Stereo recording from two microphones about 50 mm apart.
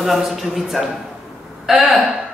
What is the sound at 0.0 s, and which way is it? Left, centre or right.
A man's voice, centre.